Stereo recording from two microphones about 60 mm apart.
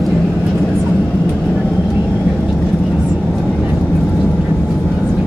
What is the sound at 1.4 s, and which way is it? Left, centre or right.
Vehicle, centre.